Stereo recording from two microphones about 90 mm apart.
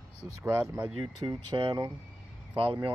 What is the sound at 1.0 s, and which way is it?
Speech, 60° right (ahead or behind).